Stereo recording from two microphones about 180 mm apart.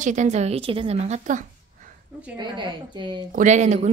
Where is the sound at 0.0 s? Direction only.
40° right (ahead or behind).